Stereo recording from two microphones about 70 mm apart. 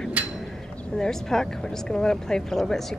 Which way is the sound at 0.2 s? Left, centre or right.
Right.